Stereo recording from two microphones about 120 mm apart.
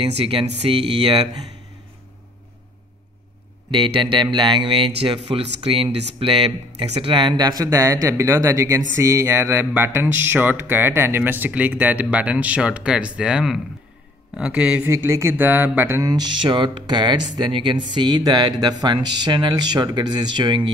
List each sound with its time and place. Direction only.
0.0 s speech: 50° right (ahead or behind)
3.7 s speech: 45° right (ahead or behind); by 14.8 s 5° right (ahead or behind)
14.9 s speech: 25° right (ahead or behind)
16.1 s speech: 40° right (ahead or behind)